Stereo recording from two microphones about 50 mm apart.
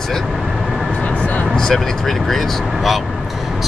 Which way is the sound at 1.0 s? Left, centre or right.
Left.